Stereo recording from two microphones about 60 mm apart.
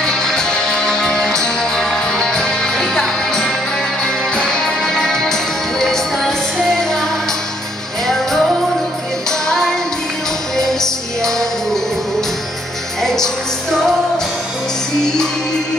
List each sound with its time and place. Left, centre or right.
0.0 s music: centre
8.1 s music: centre
9.5 s music: centre
13.0 s music: centre